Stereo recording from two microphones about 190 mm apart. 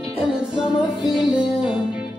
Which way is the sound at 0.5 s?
5° right (ahead or behind).